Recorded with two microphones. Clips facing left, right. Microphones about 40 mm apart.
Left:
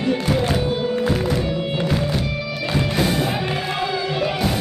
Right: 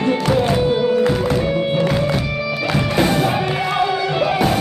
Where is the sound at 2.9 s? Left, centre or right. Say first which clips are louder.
Right 5 dB; right.